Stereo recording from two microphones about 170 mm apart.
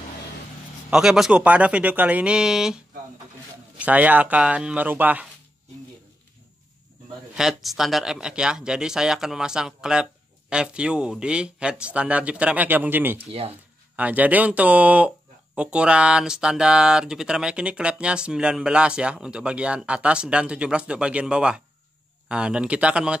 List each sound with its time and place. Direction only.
0.8 s speech: 5° right (ahead or behind)
7.3 s speech: centre (ahead or behind)
13.2 s speech: 35° right (ahead or behind)
13.9 s speech: 10° right (ahead or behind)